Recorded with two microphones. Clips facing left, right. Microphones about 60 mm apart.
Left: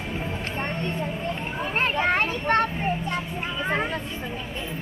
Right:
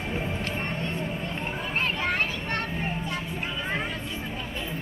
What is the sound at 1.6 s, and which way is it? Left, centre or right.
Children playing, left.